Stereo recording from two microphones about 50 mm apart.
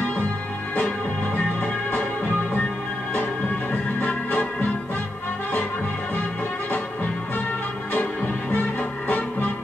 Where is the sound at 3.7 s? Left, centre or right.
Left.